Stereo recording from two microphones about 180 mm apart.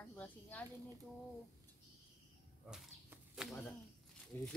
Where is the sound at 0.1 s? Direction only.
10° left (ahead or behind).